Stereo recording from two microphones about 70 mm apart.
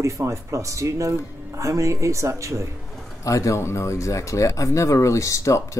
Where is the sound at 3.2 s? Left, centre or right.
Left.